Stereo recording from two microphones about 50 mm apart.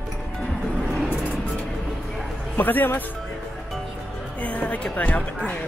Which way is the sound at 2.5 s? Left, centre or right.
Left.